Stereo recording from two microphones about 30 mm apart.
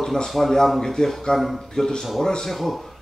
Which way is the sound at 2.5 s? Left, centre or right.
Centre.